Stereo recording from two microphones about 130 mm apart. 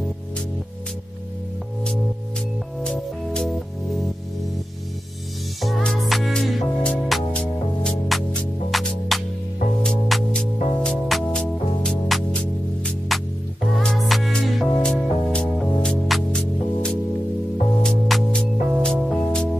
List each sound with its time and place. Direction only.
2.8 s music: 5° left (ahead or behind)
5.6 s music: centre (ahead or behind)